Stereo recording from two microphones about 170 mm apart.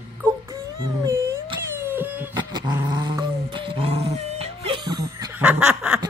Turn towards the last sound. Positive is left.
turn(degrees=-5)  # may be behind; listen again after turning